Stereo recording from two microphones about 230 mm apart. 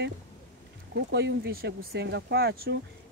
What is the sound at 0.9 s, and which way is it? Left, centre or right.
Speech, right.